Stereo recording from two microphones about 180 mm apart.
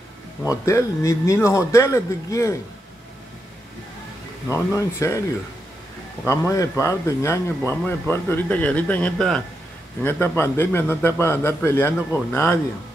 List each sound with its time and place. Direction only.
0.4 s speech: 15° left (ahead or behind)
4.5 s speech: 15° left (ahead or behind)
6.2 s speech: 15° left (ahead or behind)